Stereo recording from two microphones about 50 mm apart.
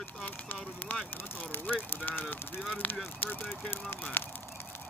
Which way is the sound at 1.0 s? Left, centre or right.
Left.